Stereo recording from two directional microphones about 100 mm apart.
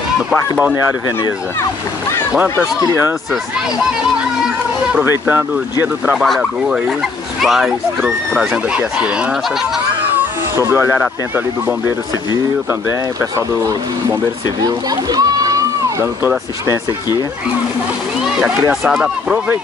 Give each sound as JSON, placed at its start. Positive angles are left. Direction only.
{"t": 5.2, "sound": "speech", "side_deg": -20}
{"t": 6.1, "sound": "speech", "side_deg": 0}
{"t": 10.1, "sound": "cat", "side_deg": -25}
{"t": 14.6, "sound": "speech", "side_deg": -40}
{"t": 18.2, "sound": "speech", "side_deg": -5}